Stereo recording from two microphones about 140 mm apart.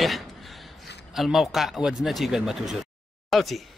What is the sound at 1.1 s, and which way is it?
Speech, centre (ahead or behind).